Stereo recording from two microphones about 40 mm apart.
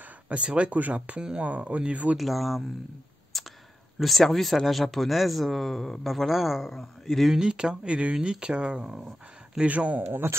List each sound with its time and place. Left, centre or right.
0.3 s speech: right
2.1 s a man's voice: centre
3.3 s a sound: centre
4.0 s a man's voice: centre
7.3 s speech: centre
9.7 s speech: right
10.0 s a man's voice: right